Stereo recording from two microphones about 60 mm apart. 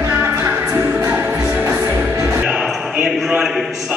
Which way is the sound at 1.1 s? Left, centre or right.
Right.